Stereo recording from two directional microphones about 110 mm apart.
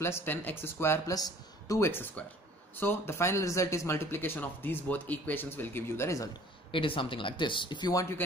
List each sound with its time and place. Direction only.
0.0 s speech: 20° left (ahead or behind)
1.8 s speech: 20° left (ahead or behind)
6.7 s speech: 50° left (ahead or behind)
7.9 s speech: 30° left (ahead or behind)